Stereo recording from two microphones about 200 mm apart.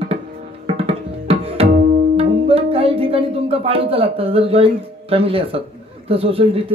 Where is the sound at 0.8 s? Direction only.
30° right (ahead or behind).